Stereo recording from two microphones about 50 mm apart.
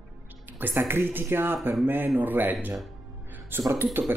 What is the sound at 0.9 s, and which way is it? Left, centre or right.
Speech, right.